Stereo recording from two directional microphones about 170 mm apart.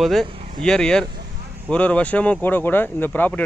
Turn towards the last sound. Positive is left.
turn(degrees=10)  # may be behind; listen again after turning